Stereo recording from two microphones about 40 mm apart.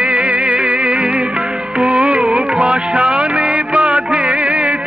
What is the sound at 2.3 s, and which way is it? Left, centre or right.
Music of bollywood, right.